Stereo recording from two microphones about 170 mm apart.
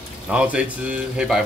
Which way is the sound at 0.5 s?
5° right (ahead or behind).